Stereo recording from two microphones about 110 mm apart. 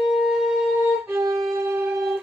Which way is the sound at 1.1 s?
30° right (ahead or behind).